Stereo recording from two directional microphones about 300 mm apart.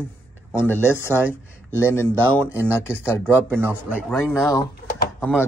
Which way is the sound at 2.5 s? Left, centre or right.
Centre.